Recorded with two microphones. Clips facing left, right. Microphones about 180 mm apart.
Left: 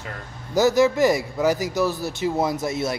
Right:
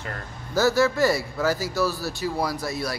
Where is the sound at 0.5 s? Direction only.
20° left (ahead or behind).